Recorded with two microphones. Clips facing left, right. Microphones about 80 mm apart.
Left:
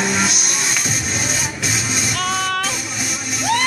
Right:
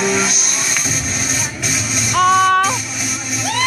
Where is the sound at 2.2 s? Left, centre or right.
Right.